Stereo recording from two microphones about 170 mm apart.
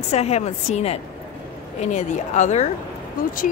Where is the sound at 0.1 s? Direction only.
40° left (ahead or behind).